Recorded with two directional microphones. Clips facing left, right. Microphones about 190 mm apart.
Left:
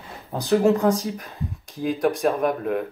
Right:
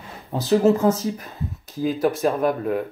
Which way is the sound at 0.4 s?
5° right (ahead or behind).